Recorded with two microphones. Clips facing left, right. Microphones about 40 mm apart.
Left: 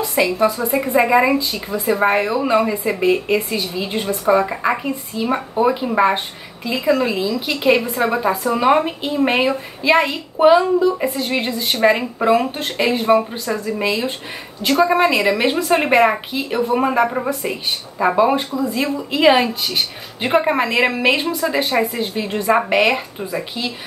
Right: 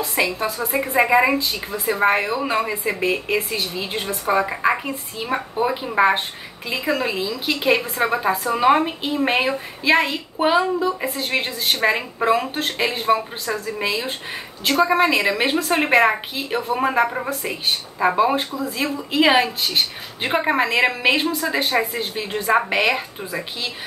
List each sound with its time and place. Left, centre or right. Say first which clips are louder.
0.0 s a woman's voice: left 5 dB; centre